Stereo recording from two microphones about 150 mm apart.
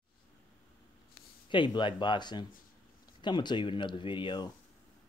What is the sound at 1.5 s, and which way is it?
Speech, 30° left (ahead or behind).